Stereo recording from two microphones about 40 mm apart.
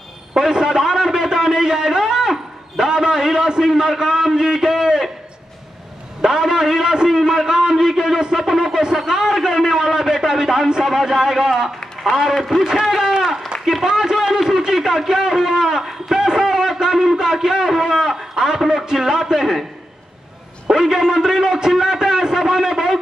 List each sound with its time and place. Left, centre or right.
0.3 s a man's voice: centre
6.2 s a man's voice: centre
13.2 s a sound: centre
13.8 s a sound: centre
18.9 s a man's voice: centre
20.6 s a man's voice: centre